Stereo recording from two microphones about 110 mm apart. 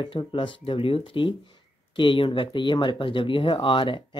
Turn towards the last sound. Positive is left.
turn(degrees=45)  # may be behind; listen again after turning